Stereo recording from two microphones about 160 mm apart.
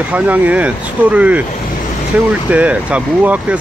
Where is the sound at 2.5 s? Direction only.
10° right (ahead or behind).